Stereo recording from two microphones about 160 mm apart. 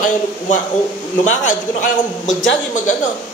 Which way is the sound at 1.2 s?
50° left (ahead or behind).